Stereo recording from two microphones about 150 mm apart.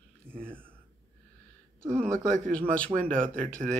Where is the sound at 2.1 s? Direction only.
20° right (ahead or behind).